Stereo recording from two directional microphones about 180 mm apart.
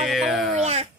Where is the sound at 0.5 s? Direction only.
35° right (ahead or behind).